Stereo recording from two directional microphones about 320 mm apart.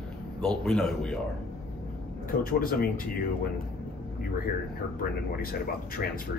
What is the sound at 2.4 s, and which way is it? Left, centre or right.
Speech, left.